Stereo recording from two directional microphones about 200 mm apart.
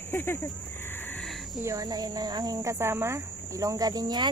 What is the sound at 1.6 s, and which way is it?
Speech, 15° right (ahead or behind).